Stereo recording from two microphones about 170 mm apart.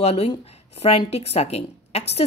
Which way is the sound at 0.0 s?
35° left (ahead or behind).